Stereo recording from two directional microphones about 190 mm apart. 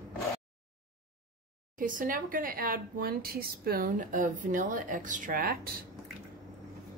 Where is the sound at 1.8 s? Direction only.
45° right (ahead or behind).